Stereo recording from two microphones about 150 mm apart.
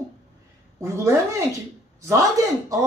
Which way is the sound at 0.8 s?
20° right (ahead or behind).